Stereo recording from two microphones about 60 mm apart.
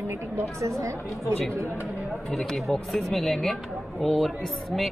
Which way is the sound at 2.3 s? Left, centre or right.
Centre.